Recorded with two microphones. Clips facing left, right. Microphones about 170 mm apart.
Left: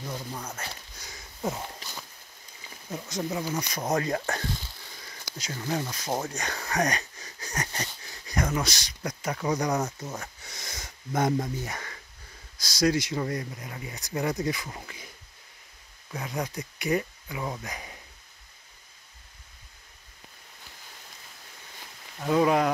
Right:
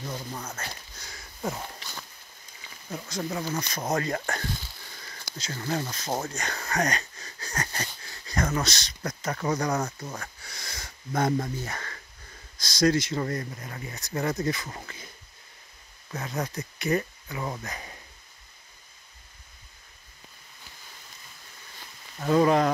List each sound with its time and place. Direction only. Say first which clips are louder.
0.0 s speech: even; centre (ahead or behind)
0.6 s a sound: even; 15° left (ahead or behind)
2.9 s speech: left 1 dB; 15° left (ahead or behind)
16.1 s speech: even; 10° left (ahead or behind)
22.2 s speech: right 2 dB; 5° left (ahead or behind)